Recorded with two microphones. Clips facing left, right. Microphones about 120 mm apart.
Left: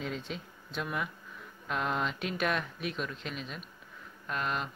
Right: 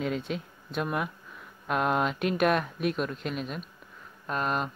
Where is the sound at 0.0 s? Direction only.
55° right (ahead or behind).